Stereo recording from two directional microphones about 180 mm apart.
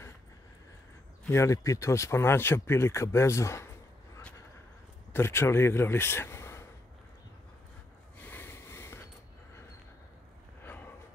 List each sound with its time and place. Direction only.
1.2 s speech: 15° left (ahead or behind)
5.1 s speech: 15° left (ahead or behind)
8.2 s a sound: 10° left (ahead or behind)
10.6 s gasp: 10° left (ahead or behind)